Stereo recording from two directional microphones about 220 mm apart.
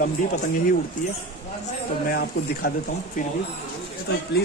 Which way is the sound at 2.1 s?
40° left (ahead or behind).